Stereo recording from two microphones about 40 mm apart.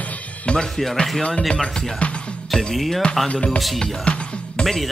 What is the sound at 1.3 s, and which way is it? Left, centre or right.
Speech, centre.